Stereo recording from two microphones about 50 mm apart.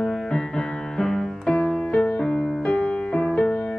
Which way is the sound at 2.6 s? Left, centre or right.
Left.